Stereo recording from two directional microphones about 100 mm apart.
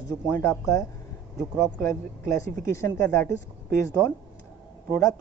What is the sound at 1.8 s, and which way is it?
Speech, 30° left (ahead or behind).